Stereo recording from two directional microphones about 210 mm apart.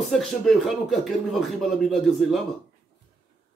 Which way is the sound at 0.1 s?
Centre (ahead or behind).